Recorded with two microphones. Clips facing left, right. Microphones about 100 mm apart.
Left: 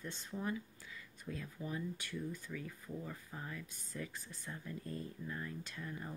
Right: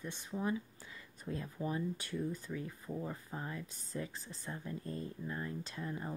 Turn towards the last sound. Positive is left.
turn(degrees=-25)  # may be behind; listen again after turning